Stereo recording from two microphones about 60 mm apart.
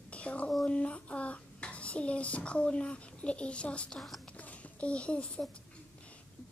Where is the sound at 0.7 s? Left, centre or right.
Centre.